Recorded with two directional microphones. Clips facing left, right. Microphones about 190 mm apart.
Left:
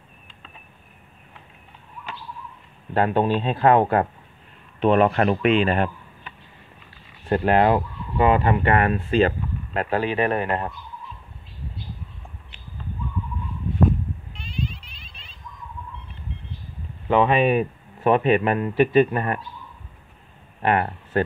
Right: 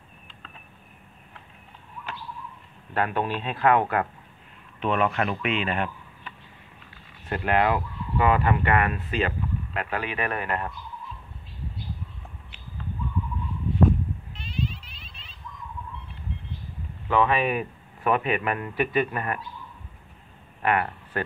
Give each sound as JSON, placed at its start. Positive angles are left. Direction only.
{"t": 2.9, "sound": "a man's voice", "side_deg": 30}
{"t": 7.2, "sound": "a man's voice", "side_deg": 35}
{"t": 14.5, "sound": "a sound", "side_deg": 0}
{"t": 17.1, "sound": "a man's voice", "side_deg": 25}
{"t": 20.6, "sound": "speech", "side_deg": 30}